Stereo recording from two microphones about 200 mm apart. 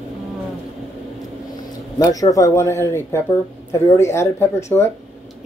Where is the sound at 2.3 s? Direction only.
15° left (ahead or behind).